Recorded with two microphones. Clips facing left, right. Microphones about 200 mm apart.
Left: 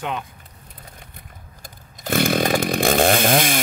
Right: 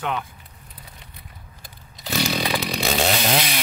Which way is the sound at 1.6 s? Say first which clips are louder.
Left 5 dB; 50° left (ahead or behind).